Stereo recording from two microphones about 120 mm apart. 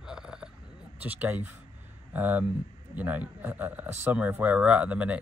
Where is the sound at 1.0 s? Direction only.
15° right (ahead or behind).